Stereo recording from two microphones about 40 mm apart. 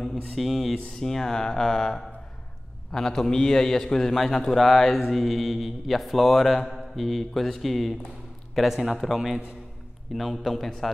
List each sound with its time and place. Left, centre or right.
0.0 s a sound: centre
0.7 s a man's voice: centre
8.5 s a man's voice: centre